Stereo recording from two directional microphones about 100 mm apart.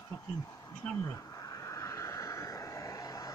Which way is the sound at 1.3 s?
35° left (ahead or behind).